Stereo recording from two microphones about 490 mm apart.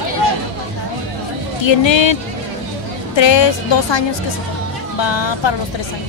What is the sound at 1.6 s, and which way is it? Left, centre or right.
Speech, left.